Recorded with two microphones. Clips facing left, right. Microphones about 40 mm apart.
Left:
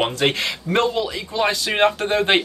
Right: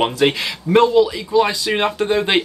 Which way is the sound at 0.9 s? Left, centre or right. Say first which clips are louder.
Right 9 dB; centre.